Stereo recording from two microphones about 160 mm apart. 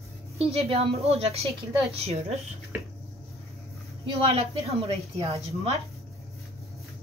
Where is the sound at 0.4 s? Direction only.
40° right (ahead or behind).